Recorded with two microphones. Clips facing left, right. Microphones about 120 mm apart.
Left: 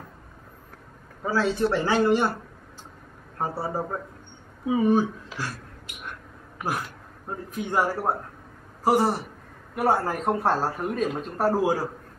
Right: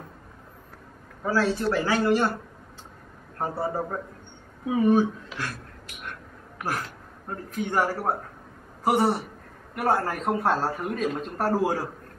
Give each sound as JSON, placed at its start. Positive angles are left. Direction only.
{"t": 1.7, "sound": "a man's voice", "side_deg": 25}
{"t": 3.3, "sound": "a man's voice", "side_deg": 10}
{"t": 6.6, "sound": "a man's voice", "side_deg": 5}